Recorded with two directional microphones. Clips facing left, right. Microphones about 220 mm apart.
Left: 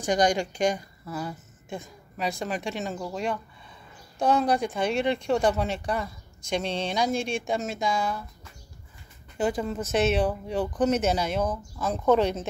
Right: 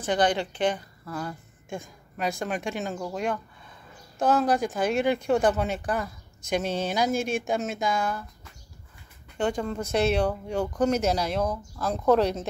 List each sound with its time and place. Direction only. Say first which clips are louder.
0.0 s a woman's voice: left 1 dB; 15° left (ahead or behind)
9.4 s speech: even; 5° left (ahead or behind)